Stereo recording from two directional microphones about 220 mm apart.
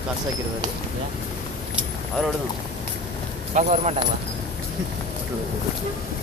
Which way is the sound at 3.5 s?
30° right (ahead or behind).